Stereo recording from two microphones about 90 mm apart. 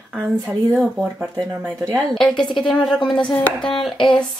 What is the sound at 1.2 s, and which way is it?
Speech, 20° right (ahead or behind).